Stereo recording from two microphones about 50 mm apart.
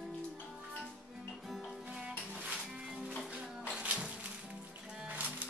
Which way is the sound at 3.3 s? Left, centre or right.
Centre.